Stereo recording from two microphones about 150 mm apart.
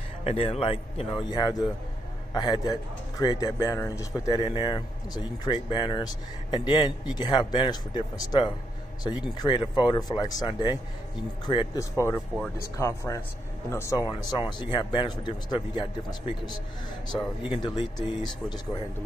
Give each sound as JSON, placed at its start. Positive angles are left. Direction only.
{"t": 0.2, "sound": "a man's voice", "side_deg": 45}
{"t": 1.3, "sound": "speech", "side_deg": 25}
{"t": 4.4, "sound": "speech", "side_deg": 35}
{"t": 17.6, "sound": "speech", "side_deg": 30}